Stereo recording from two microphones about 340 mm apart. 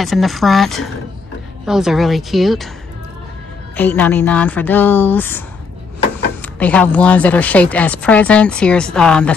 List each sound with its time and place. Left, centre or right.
0.0 s speech: centre
3.7 s speech: centre
6.4 s speech: centre